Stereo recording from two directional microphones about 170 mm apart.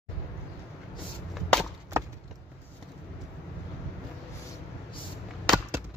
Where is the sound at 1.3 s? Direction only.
Centre (ahead or behind).